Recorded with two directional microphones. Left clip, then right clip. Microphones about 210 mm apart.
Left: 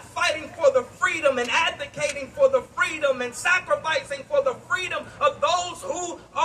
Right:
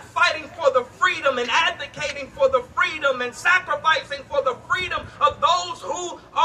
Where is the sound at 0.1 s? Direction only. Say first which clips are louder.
Right 4 dB; centre (ahead or behind).